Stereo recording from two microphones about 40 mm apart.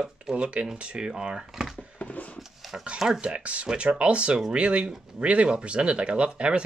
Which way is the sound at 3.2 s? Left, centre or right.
Right.